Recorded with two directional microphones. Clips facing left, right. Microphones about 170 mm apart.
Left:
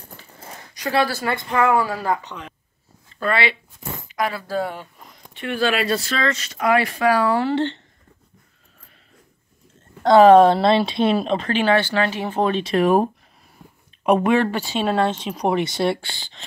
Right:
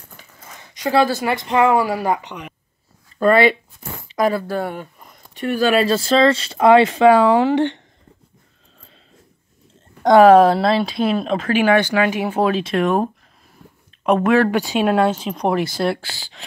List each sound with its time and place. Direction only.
0.6 s a woman's voice: 20° right (ahead or behind)
3.2 s speech: 45° right (ahead or behind)
5.3 s speech: 40° right (ahead or behind); by 7.8 s 15° right (ahead or behind)
10.0 s speech: 10° right (ahead or behind)
13.6 s a sound: 10° left (ahead or behind)
14.0 s speech: centre (ahead or behind)
14.5 s speech: 15° right (ahead or behind)